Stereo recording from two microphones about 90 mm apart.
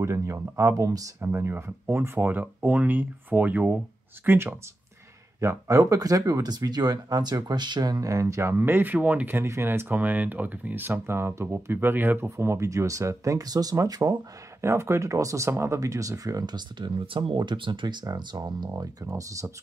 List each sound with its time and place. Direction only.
0.0 s speech: 30° right (ahead or behind)
5.4 s speech: 35° right (ahead or behind)
14.6 s speech: 30° right (ahead or behind); by 17.4 s 75° right (ahead or behind)
17.4 s speech: 60° right (ahead or behind)
18.7 s speech: 40° right (ahead or behind)